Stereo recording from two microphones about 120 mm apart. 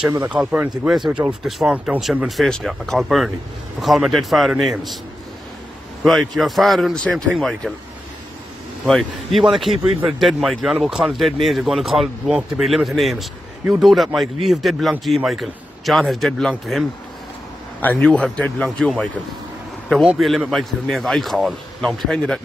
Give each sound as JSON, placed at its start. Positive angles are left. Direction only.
{"t": 0.2, "sound": "a man's voice", "side_deg": -10}
{"t": 6.0, "sound": "a man's voice", "side_deg": 0}
{"t": 8.8, "sound": "a man's voice", "side_deg": 0}
{"t": 17.8, "sound": "speech", "side_deg": 10}
{"t": 20.2, "sound": "a man's voice", "side_deg": 0}